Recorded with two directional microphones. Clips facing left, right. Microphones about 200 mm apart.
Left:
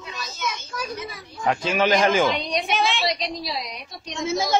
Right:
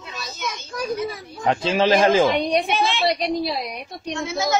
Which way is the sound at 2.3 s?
55° right (ahead or behind).